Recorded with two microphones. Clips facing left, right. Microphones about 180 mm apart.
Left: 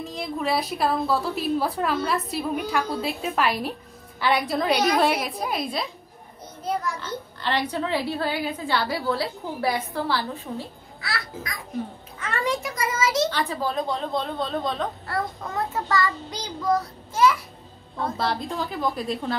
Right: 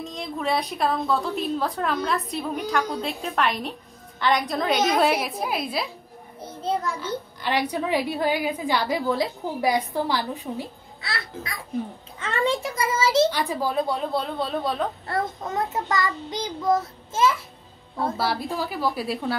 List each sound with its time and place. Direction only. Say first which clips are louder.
0.0 s a woman's voice: left 1 dB; centre (ahead or behind)
6.4 s a sound: right 2 dB; 25° right (ahead or behind)
7.0 s a woman's voice: right 3 dB; 10° right (ahead or behind)
12.2 s child singing: right 2 dB; 25° right (ahead or behind)
13.3 s a woman's voice: right 1 dB; 10° right (ahead or behind)
15.0 s child singing: right 2 dB; 20° right (ahead or behind)
18.1 s a woman's voice: left 2 dB; 5° right (ahead or behind)